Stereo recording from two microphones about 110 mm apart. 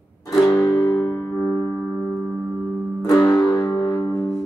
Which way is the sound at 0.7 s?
20° left (ahead or behind).